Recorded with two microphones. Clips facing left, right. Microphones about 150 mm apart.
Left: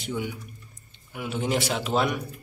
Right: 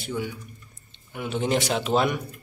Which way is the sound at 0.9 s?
5° left (ahead or behind).